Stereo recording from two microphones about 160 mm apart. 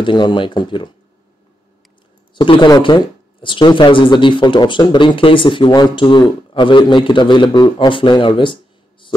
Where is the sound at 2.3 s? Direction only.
30° left (ahead or behind).